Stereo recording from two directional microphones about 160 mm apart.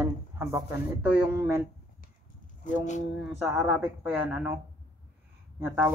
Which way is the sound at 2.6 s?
50° left (ahead or behind).